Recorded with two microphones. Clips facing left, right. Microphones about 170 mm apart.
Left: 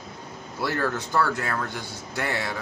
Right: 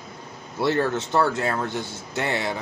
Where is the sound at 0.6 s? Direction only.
25° right (ahead or behind).